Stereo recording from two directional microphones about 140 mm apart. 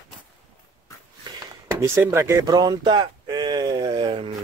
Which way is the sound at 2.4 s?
30° right (ahead or behind).